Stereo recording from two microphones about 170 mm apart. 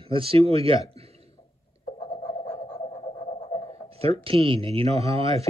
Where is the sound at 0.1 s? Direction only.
30° right (ahead or behind).